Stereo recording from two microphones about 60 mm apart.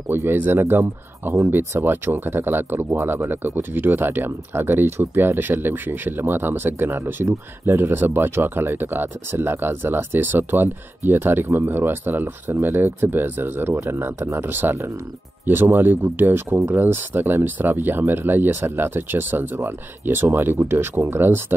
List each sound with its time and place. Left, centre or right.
0.1 s speech: right